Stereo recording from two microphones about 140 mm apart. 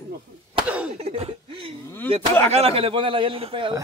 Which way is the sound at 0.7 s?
10° right (ahead or behind).